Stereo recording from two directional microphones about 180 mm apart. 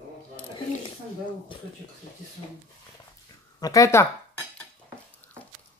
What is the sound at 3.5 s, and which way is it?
Speech, 20° left (ahead or behind).